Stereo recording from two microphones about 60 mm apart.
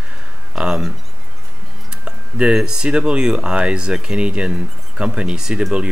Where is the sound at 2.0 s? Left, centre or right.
Centre.